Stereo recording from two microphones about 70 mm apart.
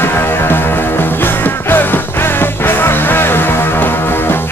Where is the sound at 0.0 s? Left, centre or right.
Left.